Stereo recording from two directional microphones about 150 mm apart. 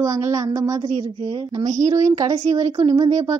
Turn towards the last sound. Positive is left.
turn(degrees=-25)  # may be behind; listen again after turning